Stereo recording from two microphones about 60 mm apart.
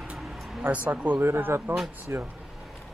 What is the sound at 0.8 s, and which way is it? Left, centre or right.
Speech, right.